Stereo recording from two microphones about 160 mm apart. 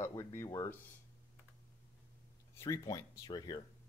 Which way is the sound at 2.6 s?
25° left (ahead or behind).